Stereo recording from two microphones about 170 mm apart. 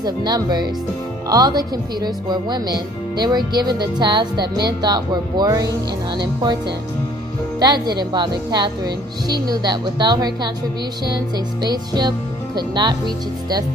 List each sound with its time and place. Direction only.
0.0 s speech: 25° right (ahead or behind)
7.6 s speech: 25° right (ahead or behind)